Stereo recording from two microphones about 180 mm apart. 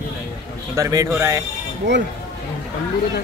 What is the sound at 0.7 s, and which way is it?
Speech, 20° right (ahead or behind).